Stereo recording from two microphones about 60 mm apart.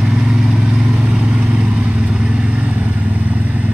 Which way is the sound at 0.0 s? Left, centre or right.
Centre.